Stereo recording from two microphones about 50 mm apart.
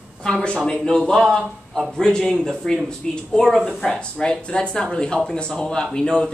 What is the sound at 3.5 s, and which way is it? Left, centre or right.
Speech, centre.